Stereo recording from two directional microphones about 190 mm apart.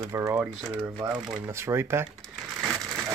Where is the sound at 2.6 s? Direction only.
Centre (ahead or behind).